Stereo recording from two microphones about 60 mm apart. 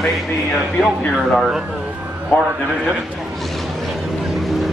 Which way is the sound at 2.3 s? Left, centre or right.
Left.